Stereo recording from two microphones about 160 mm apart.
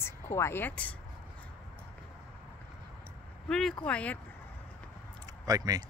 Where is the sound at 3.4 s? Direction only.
5° left (ahead or behind).